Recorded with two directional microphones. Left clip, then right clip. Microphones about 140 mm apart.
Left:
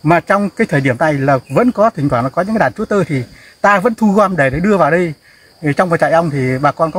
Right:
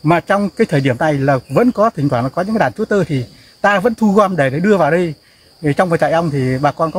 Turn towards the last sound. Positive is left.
turn(degrees=-15)  # may be behind; listen again after turning